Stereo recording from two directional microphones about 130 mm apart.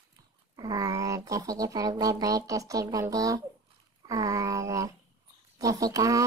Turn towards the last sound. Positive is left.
turn(degrees=-25)  # may be behind; listen again after turning